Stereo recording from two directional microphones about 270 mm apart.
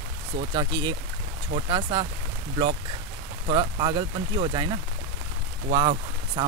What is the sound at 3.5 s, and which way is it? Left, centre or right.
Speech, centre.